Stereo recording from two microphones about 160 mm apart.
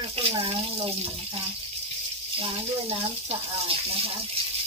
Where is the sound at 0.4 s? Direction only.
35° right (ahead or behind).